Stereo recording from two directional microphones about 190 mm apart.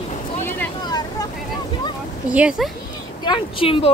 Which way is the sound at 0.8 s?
20° left (ahead or behind).